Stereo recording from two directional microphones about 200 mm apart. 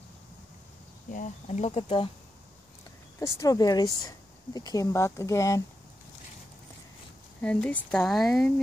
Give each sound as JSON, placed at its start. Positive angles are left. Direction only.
{"t": 1.1, "sound": "speech", "side_deg": 40}
{"t": 3.2, "sound": "speech", "side_deg": 15}
{"t": 7.4, "sound": "speech", "side_deg": 5}